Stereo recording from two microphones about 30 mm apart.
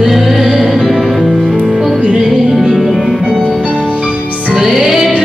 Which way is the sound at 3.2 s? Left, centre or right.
Centre.